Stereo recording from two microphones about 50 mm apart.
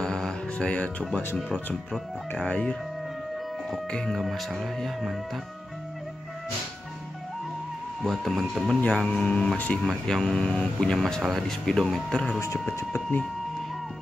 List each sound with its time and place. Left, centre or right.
0.0 s music: centre
2.4 s speech: left
3.9 s speech: centre
4.2 s speech: centre
8.0 s speech: centre
10.3 s speech: centre